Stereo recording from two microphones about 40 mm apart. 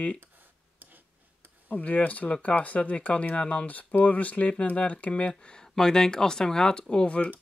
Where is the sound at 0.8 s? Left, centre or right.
Right.